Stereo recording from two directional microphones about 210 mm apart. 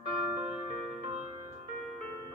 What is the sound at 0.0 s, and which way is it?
Music, 25° right (ahead or behind).